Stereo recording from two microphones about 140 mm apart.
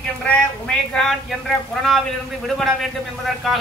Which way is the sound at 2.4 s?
Centre (ahead or behind).